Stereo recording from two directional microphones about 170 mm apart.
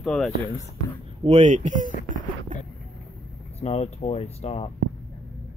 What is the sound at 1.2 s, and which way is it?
Speech, 40° right (ahead or behind).